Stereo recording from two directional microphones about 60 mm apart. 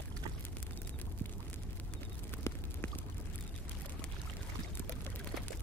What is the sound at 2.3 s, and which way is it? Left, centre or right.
Clip-clop, left.